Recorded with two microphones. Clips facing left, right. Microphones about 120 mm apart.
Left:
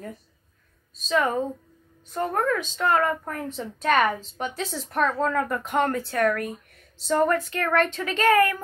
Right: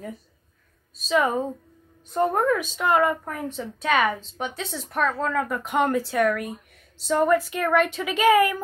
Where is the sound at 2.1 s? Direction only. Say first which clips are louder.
Right 3 dB; 20° right (ahead or behind).